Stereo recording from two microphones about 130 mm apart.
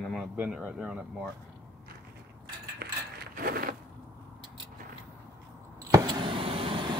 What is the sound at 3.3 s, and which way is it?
Mechanisms, 90° right.